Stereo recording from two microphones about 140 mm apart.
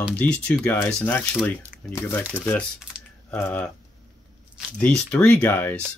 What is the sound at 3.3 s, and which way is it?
Speech, 10° left (ahead or behind).